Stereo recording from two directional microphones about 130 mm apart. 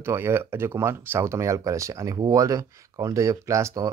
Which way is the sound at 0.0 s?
20° right (ahead or behind).